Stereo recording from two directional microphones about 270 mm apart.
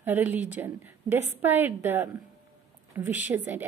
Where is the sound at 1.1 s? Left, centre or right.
Left.